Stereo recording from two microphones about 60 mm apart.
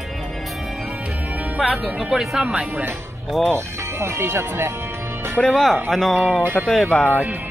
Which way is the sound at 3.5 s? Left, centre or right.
Right.